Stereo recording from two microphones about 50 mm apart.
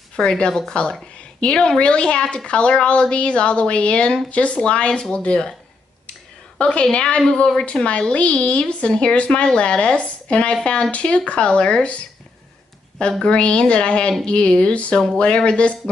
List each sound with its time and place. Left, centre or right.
0.1 s a woman's voice: centre
6.6 s a woman's voice: left
13.2 s a woman's voice: centre